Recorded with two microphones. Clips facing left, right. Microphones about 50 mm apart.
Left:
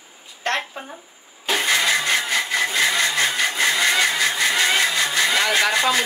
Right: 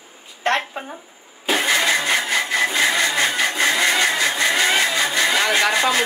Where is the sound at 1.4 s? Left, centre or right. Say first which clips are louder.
Right 1 dB; centre.